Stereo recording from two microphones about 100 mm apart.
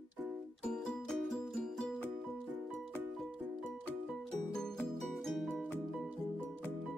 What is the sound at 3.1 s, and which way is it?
Music, centre (ahead or behind).